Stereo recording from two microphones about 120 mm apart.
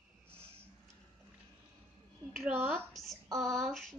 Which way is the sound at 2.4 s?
15° right (ahead or behind).